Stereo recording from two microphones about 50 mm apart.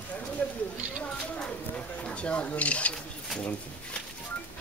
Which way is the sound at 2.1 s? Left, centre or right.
Left.